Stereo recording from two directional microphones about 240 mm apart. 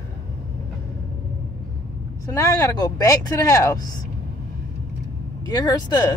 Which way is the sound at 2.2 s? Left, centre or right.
Centre.